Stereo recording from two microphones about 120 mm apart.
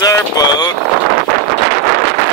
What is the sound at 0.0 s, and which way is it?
Vehicle, 35° left (ahead or behind).